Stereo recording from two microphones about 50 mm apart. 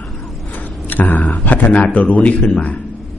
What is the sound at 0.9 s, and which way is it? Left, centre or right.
A man's voice, left.